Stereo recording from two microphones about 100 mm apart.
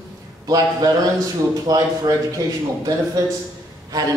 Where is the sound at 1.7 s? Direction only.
35° right (ahead or behind).